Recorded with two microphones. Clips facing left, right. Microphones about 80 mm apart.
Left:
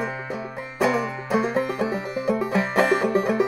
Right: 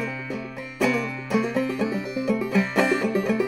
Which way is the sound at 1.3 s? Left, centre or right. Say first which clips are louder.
Left 1 dB; left.